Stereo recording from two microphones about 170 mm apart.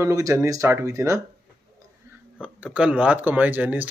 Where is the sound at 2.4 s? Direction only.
5° right (ahead or behind).